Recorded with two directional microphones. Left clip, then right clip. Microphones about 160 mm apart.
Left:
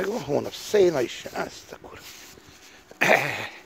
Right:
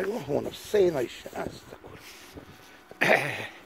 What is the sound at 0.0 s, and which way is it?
Speech, 35° left (ahead or behind).